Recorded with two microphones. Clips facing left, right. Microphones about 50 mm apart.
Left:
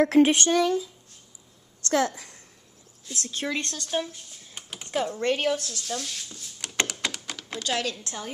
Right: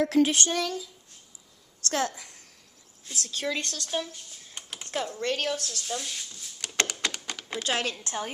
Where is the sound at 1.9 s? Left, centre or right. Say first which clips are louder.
Left 4 dB; left.